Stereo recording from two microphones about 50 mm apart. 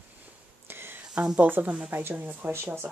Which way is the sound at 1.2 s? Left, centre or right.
Right.